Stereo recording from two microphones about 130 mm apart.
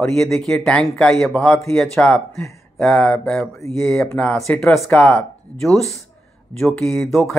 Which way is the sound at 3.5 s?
20° left (ahead or behind).